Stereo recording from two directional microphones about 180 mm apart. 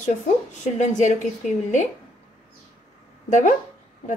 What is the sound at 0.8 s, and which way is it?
Speech, 40° left (ahead or behind).